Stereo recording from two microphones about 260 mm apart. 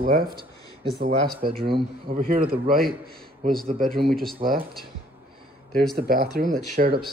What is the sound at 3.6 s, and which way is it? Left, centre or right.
Speech, right.